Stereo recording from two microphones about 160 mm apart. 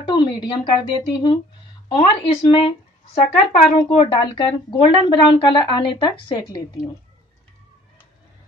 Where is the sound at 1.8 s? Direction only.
30° left (ahead or behind).